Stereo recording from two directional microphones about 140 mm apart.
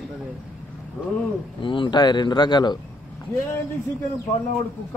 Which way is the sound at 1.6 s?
35° left (ahead or behind).